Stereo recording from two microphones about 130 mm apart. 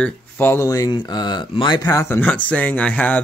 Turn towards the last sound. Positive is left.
turn(degrees=10)  # may be behind; listen again after turning